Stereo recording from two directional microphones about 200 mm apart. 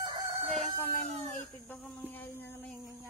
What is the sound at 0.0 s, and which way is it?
Crowing, 25° right (ahead or behind).